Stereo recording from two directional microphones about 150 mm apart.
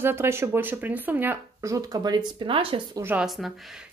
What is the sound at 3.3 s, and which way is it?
Speech, centre (ahead or behind).